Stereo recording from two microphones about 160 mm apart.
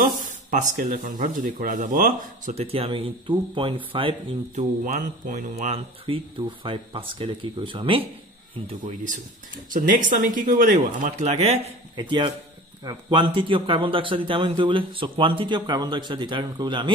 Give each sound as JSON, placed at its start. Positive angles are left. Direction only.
{"t": 0.0, "sound": "speech", "side_deg": -55}
{"t": 2.5, "sound": "a man's voice", "side_deg": -35}
{"t": 4.6, "sound": "speech", "side_deg": -50}
{"t": 6.0, "sound": "a man's voice", "side_deg": -30}
{"t": 8.8, "sound": "a man's voice", "side_deg": -55}